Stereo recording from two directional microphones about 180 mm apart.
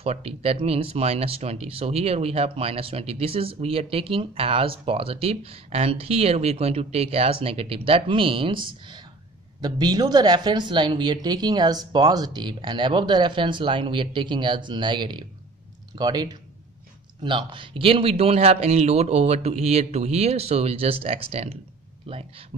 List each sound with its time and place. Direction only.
0.0 s speech: 35° right (ahead or behind)